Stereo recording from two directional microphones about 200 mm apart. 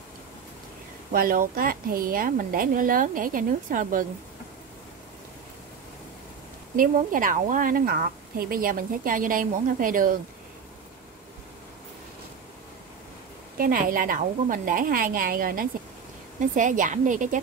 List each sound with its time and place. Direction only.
1.1 s a woman's voice: 45° right (ahead or behind)
6.8 s a woman's voice: 45° right (ahead or behind)
13.6 s a woman's voice: 45° right (ahead or behind)